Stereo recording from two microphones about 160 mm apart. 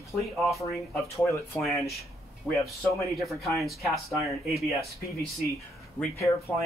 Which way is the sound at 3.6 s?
Centre (ahead or behind).